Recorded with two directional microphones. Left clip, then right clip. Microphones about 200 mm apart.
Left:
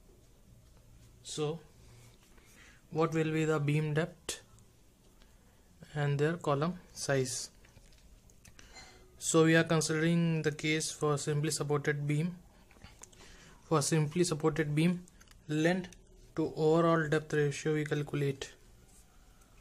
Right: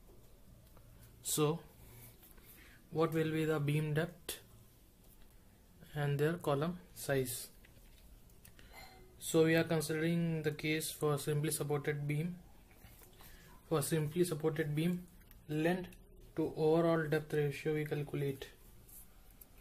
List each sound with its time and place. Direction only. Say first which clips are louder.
1.2 s speech: right 2 dB; 25° right (ahead or behind)
2.9 s speech: left 3 dB; 20° left (ahead or behind)
5.9 s speech: left 3 dB; 20° left (ahead or behind)
9.2 s speech: left 4 dB; 25° left (ahead or behind)
13.7 s speech: left 5 dB; 30° left (ahead or behind)